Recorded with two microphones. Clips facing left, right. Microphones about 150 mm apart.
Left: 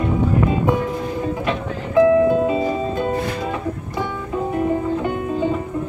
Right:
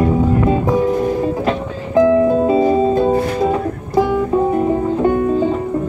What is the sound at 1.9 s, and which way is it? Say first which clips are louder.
Music: right 2 dB; 35° right (ahead or behind).